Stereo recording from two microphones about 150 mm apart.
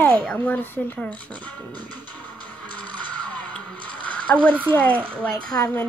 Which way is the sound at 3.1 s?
10° left (ahead or behind).